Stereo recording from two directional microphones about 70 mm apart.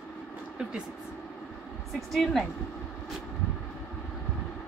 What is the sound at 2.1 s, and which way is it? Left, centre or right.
Speech, centre.